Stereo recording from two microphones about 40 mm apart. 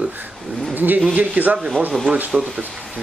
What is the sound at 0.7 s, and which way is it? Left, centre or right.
Speech, right.